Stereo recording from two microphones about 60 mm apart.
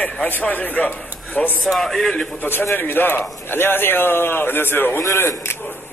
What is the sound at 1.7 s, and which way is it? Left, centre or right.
Speech, centre.